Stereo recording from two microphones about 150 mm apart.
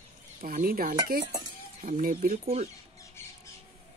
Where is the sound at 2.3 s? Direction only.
45° right (ahead or behind).